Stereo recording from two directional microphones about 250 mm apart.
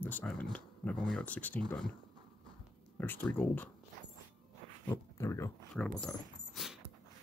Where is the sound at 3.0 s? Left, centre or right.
Centre.